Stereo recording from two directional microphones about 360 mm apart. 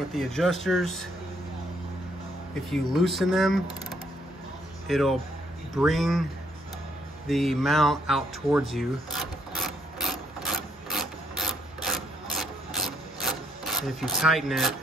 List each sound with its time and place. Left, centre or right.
0.1 s speech: centre
2.7 s speech: centre
4.8 s speech: centre
7.2 s speech: centre
9.9 s a sound: centre
12.4 s wood: centre